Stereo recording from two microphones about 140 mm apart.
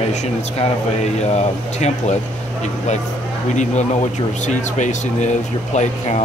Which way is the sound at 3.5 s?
60° left (ahead or behind).